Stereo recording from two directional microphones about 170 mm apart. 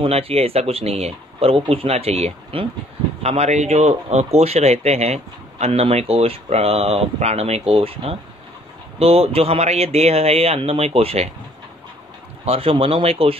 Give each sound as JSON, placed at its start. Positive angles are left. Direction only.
{"t": 0.0, "sound": "speech", "side_deg": -35}
{"t": 12.4, "sound": "speech", "side_deg": -35}